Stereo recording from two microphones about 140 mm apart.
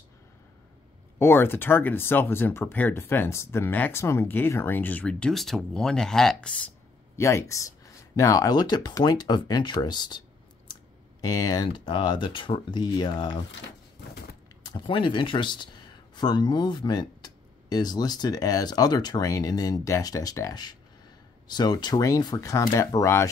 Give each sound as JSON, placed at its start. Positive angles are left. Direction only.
{"t": 1.2, "sound": "speech", "side_deg": 15}
{"t": 7.2, "sound": "speech", "side_deg": 20}
{"t": 14.6, "sound": "speech", "side_deg": 35}